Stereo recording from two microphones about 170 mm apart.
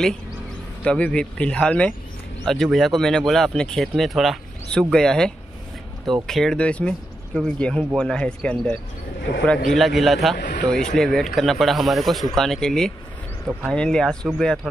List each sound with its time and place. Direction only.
0.8 s speech: 5° left (ahead or behind)
10.3 s speech: 90° left
10.6 s speech: 5° left (ahead or behind)